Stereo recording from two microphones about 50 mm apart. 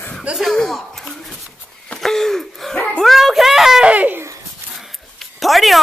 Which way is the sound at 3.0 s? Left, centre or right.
Centre.